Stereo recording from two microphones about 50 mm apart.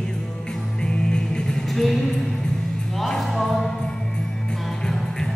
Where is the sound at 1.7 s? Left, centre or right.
Centre.